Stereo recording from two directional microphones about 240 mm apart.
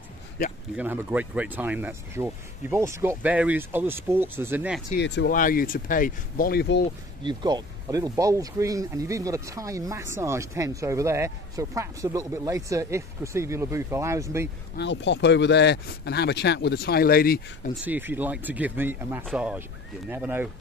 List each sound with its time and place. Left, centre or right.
0.7 s speech: centre
4.9 s speech: left
7.2 s speech: centre
14.8 s speech: left
17.8 s speech: centre